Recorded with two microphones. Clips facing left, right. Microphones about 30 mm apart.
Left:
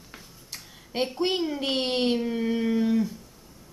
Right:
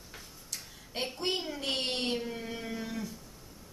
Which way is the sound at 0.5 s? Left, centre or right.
Centre.